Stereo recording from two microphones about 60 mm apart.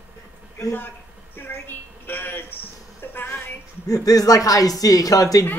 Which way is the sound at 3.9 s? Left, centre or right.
Left.